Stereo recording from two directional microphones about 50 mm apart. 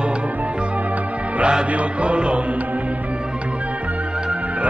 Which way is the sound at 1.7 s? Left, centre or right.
Right.